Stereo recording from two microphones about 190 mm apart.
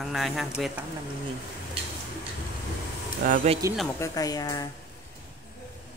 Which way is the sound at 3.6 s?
15° right (ahead or behind).